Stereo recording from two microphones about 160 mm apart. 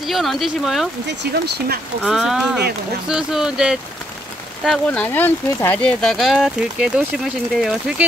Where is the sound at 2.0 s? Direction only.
Centre (ahead or behind).